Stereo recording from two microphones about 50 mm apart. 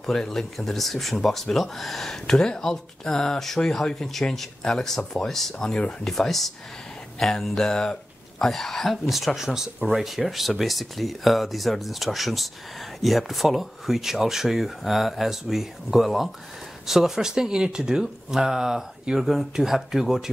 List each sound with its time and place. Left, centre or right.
0.0 s speech: centre